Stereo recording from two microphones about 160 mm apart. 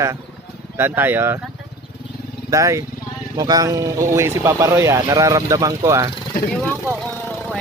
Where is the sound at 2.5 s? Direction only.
20° right (ahead or behind).